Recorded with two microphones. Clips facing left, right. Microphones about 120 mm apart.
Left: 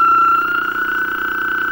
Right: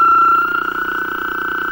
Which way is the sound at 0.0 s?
25° right (ahead or behind).